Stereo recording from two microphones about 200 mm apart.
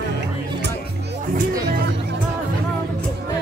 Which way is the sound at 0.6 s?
50° right (ahead or behind).